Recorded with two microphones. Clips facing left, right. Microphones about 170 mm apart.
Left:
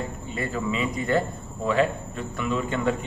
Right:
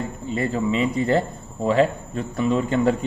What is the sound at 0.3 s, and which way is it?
Speech, 30° right (ahead or behind).